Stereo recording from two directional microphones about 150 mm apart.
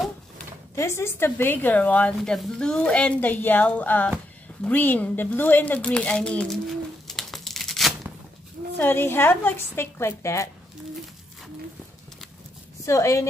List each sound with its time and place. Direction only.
0.7 s a woman's voice: 20° left (ahead or behind); by 8.1 s centre (ahead or behind)
8.7 s a woman's voice: 15° left (ahead or behind)
12.8 s a woman's voice: 20° left (ahead or behind)